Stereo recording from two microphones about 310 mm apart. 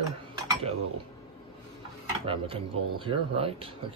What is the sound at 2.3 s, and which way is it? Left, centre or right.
Speech, centre.